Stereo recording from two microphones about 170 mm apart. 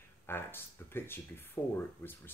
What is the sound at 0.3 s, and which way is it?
Speech, 15° left (ahead or behind).